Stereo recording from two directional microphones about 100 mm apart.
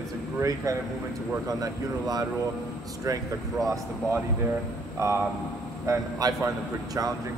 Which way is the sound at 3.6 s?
35° right (ahead or behind).